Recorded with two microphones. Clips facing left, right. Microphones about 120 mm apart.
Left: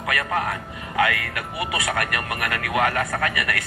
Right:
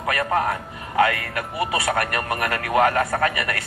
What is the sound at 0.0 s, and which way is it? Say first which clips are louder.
Speech: right 3 dB; 30° right (ahead or behind).